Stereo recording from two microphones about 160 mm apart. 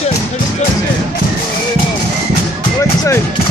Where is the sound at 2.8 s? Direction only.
20° left (ahead or behind).